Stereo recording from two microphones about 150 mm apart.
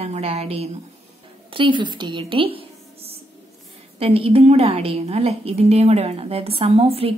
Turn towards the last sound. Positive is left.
turn(degrees=-40)  # may be behind; listen again after turning